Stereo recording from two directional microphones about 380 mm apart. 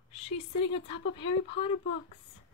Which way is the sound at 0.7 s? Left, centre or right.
Centre.